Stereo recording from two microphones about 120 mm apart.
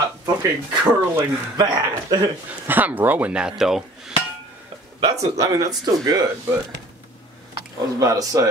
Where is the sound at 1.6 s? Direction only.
35° right (ahead or behind).